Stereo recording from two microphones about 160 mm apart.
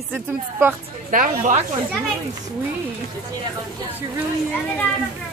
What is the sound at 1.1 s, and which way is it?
Speech, 55° right (ahead or behind).